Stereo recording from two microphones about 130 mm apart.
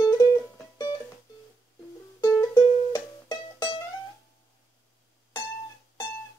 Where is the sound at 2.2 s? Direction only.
25° left (ahead or behind).